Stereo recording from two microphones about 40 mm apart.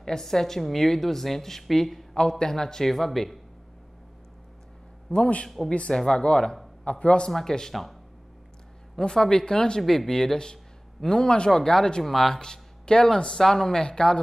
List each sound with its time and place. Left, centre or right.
0.0 s a woman's voice: centre
5.1 s a man's voice: left
7.2 s a woman's voice: centre
7.7 s speech: centre
8.9 s a woman's voice: centre
12.0 s speech: centre
12.4 s a woman's voice: centre